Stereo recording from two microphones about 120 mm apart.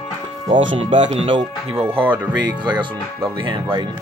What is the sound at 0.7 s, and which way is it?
Speech, 45° right (ahead or behind).